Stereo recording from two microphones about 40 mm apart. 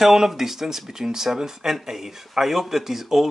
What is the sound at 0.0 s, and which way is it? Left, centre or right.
Speech, centre.